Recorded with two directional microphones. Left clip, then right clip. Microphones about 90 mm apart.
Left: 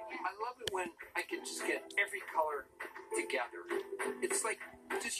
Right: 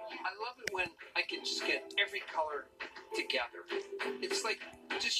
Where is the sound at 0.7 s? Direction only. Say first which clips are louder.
Right 6 dB; 15° left (ahead or behind).